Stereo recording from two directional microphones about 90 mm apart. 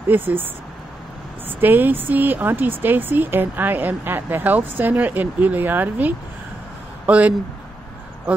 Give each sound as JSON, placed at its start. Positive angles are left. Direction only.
{"t": 0.1, "sound": "speech", "side_deg": -20}
{"t": 1.6, "sound": "speech", "side_deg": -20}